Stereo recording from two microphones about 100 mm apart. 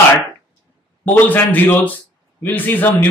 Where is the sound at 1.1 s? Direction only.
20° left (ahead or behind).